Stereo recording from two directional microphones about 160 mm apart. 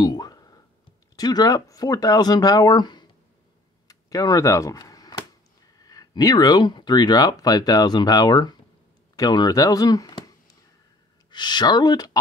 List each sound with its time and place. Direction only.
0.0 s whispering: 25° left (ahead or behind)
1.1 s speech: 25° left (ahead or behind)
3.8 s a sound: 20° left (ahead or behind)
5.8 s speech: 25° left (ahead or behind)